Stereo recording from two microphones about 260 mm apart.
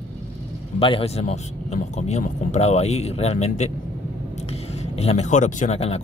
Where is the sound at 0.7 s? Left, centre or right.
Left.